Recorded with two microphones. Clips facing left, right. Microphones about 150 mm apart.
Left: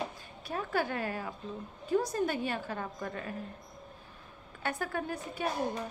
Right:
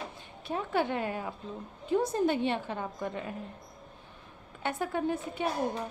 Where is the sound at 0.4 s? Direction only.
25° right (ahead or behind).